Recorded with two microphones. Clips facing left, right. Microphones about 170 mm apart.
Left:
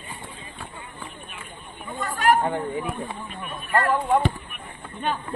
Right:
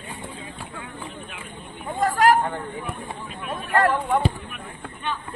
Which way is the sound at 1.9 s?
90° right.